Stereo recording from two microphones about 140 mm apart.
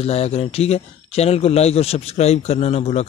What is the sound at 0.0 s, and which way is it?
Speech, 45° left (ahead or behind).